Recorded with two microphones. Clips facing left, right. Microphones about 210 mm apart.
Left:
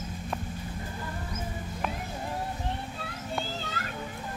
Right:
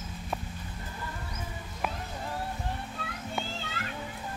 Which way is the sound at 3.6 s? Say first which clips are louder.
Left 2 dB; 40° left (ahead or behind).